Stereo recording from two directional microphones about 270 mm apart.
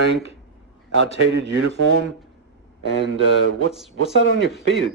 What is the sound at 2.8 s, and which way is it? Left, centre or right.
A man's voice, left.